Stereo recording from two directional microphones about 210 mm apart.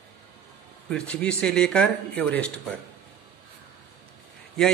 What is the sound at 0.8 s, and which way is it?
Speech, 5° left (ahead or behind).